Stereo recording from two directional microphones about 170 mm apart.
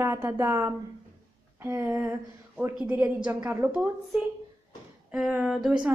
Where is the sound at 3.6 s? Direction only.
5° right (ahead or behind).